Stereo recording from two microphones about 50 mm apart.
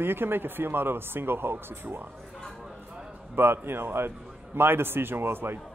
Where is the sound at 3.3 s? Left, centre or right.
Right.